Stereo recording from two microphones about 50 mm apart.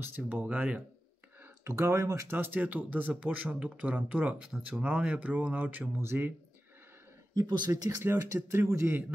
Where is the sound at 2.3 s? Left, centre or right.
Right.